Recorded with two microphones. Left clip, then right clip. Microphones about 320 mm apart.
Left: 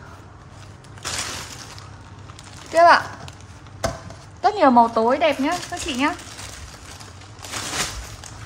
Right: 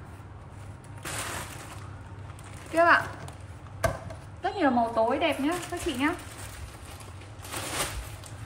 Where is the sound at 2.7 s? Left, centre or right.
Centre.